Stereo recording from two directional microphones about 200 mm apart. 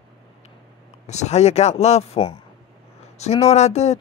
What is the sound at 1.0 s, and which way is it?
Speech, 35° left (ahead or behind).